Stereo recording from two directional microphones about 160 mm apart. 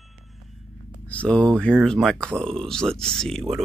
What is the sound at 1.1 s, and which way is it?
Speech, 5° left (ahead or behind).